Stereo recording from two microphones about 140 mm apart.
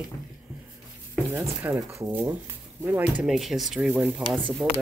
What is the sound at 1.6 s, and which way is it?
Speech, 15° right (ahead or behind).